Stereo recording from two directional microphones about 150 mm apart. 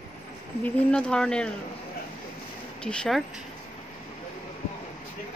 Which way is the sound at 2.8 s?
5° left (ahead or behind).